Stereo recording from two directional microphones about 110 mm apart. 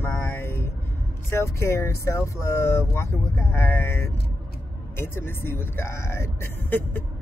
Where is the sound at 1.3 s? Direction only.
25° left (ahead or behind).